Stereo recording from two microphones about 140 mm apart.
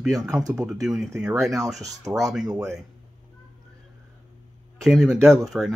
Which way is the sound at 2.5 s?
20° right (ahead or behind).